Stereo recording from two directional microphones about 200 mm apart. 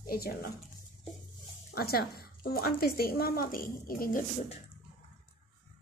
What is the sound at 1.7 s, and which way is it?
Speech, 50° left (ahead or behind).